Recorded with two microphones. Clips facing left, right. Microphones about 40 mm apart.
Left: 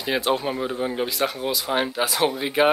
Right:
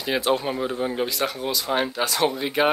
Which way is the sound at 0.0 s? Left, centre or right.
Centre.